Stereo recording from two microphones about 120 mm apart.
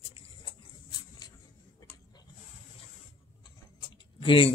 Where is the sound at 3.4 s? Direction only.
40° left (ahead or behind).